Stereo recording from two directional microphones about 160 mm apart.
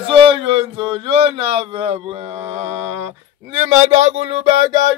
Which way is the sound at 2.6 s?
45° right (ahead or behind).